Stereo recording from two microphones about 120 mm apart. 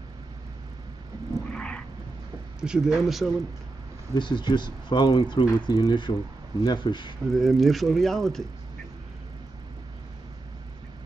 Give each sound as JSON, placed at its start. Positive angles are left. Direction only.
{"t": 1.5, "sound": "a sound", "side_deg": 5}
{"t": 2.6, "sound": "speech", "side_deg": -5}
{"t": 4.1, "sound": "speech", "side_deg": 40}
{"t": 7.3, "sound": "speech", "side_deg": 0}